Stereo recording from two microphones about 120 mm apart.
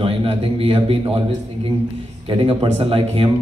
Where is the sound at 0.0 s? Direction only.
50° right (ahead or behind).